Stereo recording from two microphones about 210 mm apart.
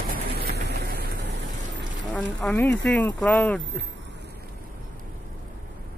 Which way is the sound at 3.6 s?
60° right (ahead or behind).